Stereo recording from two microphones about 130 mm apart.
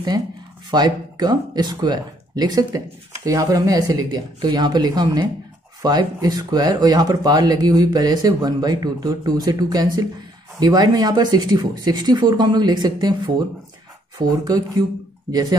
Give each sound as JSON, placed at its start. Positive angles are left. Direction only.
{"t": 0.7, "sound": "speech", "side_deg": -35}